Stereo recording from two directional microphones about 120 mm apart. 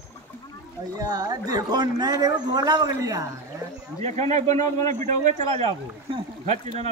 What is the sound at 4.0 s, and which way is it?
Speech, 65° right (ahead or behind).